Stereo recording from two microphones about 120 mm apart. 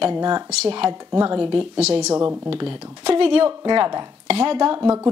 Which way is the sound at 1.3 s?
45° right (ahead or behind).